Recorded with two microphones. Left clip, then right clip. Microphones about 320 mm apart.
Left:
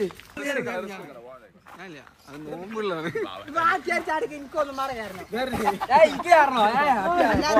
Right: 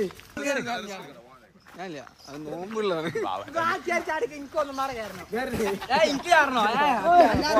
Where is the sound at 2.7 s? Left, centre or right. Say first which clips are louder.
Right 1 dB; centre.